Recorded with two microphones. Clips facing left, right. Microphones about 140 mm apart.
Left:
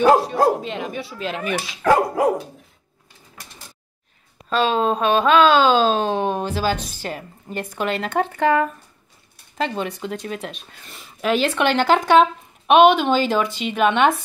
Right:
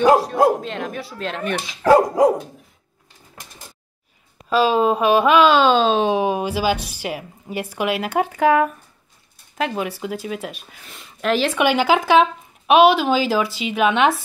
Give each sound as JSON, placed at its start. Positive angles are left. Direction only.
{"t": 0.0, "sound": "speech", "side_deg": 0}
{"t": 1.8, "sound": "speech", "side_deg": -20}
{"t": 4.5, "sound": "speech", "side_deg": -5}